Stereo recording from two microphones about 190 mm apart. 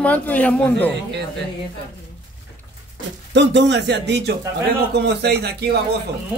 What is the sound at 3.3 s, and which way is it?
Speech, 65° right (ahead or behind).